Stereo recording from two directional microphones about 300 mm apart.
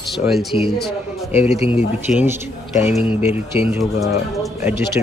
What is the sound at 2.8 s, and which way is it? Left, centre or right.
Speech, left.